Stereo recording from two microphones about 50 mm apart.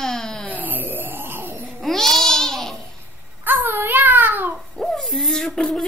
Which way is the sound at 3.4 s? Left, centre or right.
Right.